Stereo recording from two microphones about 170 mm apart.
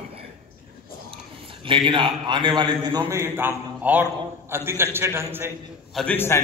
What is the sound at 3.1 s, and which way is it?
A man's voice, 15° right (ahead or behind).